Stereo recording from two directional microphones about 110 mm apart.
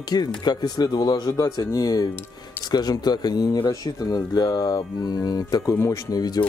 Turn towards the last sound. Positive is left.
turn(degrees=35)  # may be behind; listen again after turning